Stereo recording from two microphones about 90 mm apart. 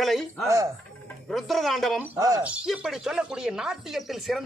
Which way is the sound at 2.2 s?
40° right (ahead or behind).